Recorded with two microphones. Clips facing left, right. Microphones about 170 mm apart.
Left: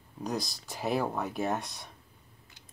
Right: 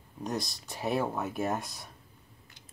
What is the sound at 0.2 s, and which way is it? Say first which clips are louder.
Speech: even; centre (ahead or behind).